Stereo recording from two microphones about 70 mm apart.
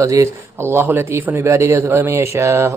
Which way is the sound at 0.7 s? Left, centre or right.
Right.